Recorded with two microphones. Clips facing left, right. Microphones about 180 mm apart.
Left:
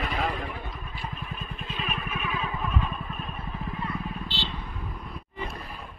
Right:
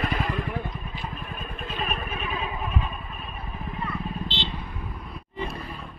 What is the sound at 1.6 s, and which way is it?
Vehicle, 45° right (ahead or behind).